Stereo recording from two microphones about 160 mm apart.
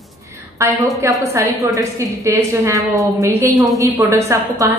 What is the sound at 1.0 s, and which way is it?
A woman's voice, 20° right (ahead or behind).